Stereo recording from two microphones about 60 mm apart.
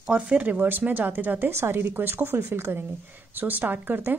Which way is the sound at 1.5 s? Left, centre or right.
Right.